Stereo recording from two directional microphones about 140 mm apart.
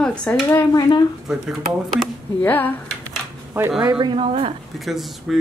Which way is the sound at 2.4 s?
15° left (ahead or behind).